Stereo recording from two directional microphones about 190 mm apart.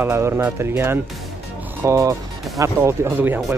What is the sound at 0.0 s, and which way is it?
Speech, 10° right (ahead or behind).